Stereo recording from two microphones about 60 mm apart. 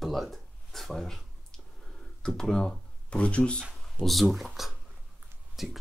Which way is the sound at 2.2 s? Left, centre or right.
Centre.